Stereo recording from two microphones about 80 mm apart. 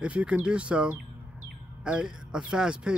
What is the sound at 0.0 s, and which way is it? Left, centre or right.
Speech, centre.